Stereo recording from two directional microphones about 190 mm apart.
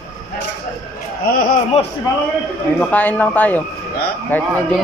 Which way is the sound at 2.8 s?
10° left (ahead or behind).